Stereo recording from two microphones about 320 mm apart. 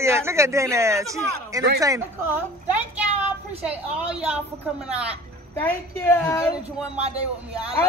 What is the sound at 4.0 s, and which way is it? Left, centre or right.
A woman's voice, centre.